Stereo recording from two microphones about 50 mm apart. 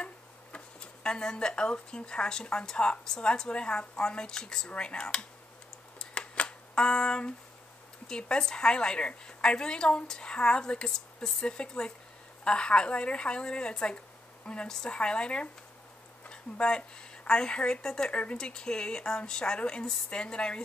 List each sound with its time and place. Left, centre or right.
0.0 s a woman's voice: left
6.1 s a sound: left
8.1 s a woman's voice: centre